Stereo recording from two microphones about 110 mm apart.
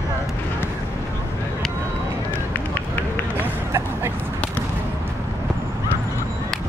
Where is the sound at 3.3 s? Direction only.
25° right (ahead or behind).